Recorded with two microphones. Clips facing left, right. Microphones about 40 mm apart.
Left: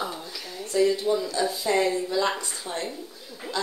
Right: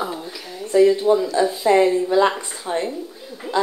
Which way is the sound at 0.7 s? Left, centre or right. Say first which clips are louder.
Right 8 dB; right.